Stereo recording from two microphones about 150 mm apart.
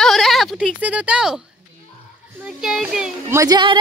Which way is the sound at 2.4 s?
Centre (ahead or behind).